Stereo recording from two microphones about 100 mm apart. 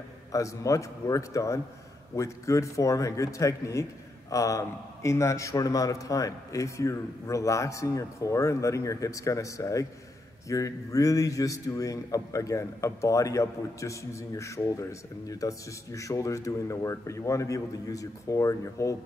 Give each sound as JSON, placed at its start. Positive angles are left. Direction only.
{"t": 0.3, "sound": "a man's voice", "side_deg": 35}